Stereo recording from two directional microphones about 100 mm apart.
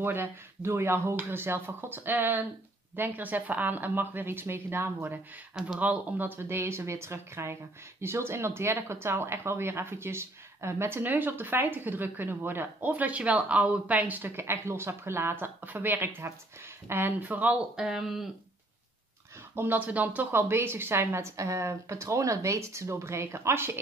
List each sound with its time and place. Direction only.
0.0 s speech: 20° right (ahead or behind); by 18.2 s 5° right (ahead or behind)
19.5 s speech: 20° right (ahead or behind)